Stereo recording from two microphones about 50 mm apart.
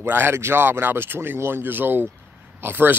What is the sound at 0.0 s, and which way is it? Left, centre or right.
Speech, right.